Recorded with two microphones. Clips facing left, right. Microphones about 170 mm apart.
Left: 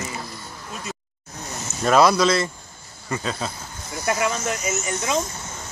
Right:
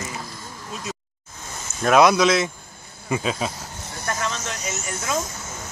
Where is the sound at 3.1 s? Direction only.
15° right (ahead or behind).